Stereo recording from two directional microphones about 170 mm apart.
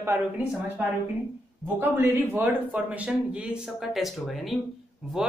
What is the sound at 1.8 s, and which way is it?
Speech, 10° right (ahead or behind).